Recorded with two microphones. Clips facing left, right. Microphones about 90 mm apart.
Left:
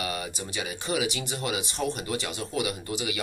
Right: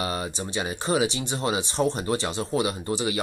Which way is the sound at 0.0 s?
30° right (ahead or behind).